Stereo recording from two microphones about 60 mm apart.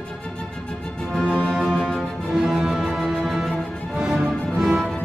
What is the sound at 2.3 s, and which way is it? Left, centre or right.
Music, centre.